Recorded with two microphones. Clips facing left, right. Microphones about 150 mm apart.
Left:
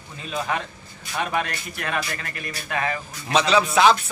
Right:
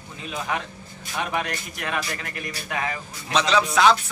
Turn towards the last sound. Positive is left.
turn(degrees=5)  # may be behind; listen again after turning